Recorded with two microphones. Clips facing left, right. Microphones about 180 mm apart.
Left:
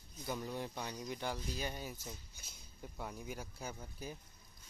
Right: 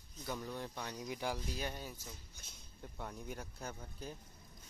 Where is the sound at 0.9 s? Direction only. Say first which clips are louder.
Right 3 dB; 5° right (ahead or behind).